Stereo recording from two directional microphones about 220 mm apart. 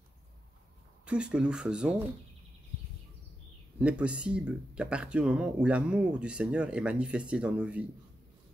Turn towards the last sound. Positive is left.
turn(degrees=-5)  # may be behind; listen again after turning